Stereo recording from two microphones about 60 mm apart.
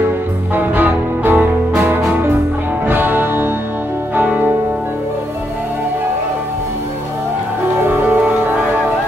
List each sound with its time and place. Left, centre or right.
0.7 s music: right
2.9 s music: right
8.1 s music: right